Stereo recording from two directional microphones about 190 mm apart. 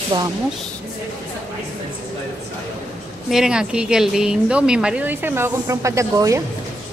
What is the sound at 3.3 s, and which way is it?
Speech, 5° right (ahead or behind).